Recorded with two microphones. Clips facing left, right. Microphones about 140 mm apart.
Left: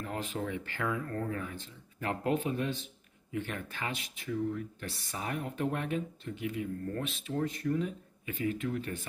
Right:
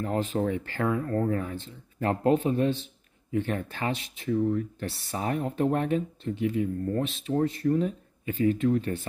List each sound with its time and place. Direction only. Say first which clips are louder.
0.0 s speech: right 9 dB; 35° right (ahead or behind)